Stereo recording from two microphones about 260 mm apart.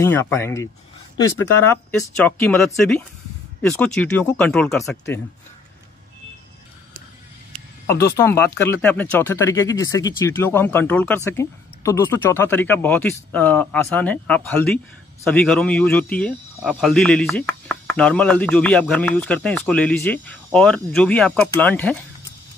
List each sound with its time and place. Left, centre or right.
0.0 s speech: centre
8.2 s speech: centre